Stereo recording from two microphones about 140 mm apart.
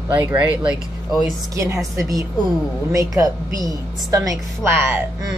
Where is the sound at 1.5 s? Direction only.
25° right (ahead or behind).